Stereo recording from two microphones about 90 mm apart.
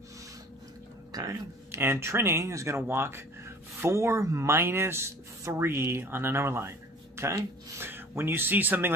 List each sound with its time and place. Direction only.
1.1 s speech: 40° right (ahead or behind)
1.8 s speech: 30° right (ahead or behind)